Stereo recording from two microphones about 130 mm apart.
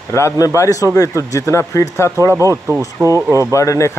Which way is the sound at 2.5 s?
20° right (ahead or behind).